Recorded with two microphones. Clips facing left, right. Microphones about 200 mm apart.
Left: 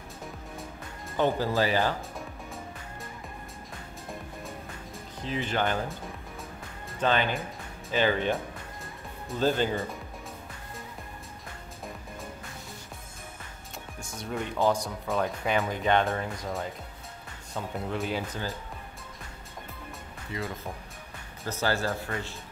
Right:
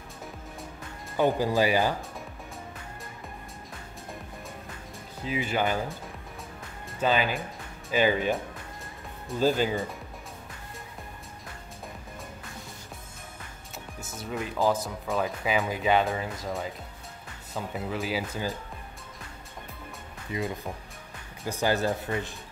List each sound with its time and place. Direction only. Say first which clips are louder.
1.1 s speech: right 2 dB; 10° right (ahead or behind)
5.2 s speech: right 1 dB; 10° right (ahead or behind)
7.0 s speech: right 1 dB; 5° right (ahead or behind)
9.3 s speech: right 1 dB; 5° right (ahead or behind)
14.1 s speech: even; 5° right (ahead or behind)
20.3 s speech: right 3 dB; 20° right (ahead or behind)